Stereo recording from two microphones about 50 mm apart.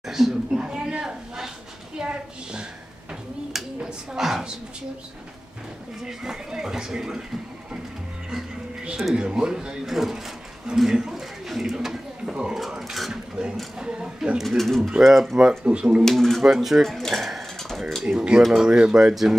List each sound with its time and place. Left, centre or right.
0.0 s speech: centre
0.6 s a sound: centre
6.0 s a sound: centre
8.9 s speech: centre
10.8 s a sound: centre
12.6 s sewing machine: centre
13.1 s a sound: centre
14.4 s pigeon: centre
15.0 s speech: centre
15.6 s speech: right
16.0 s speech: centre
18.5 s speech: centre